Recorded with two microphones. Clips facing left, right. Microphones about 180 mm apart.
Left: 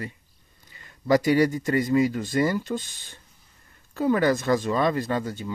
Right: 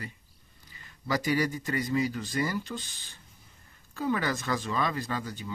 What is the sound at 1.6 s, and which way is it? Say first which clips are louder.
Speech: left 7 dB; 45° left (ahead or behind).